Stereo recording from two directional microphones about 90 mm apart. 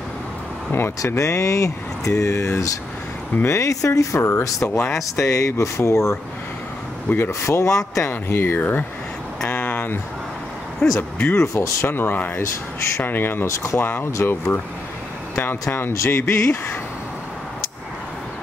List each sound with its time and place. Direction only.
0.7 s speech: 25° left (ahead or behind)
4.6 s speech: 15° left (ahead or behind)
4.9 s speech: 35° left (ahead or behind)
8.1 s speech: 25° left (ahead or behind)
9.5 s a sound: 20° left (ahead or behind)
11.0 s speech: 20° left (ahead or behind)
14.1 s speech: 35° left (ahead or behind)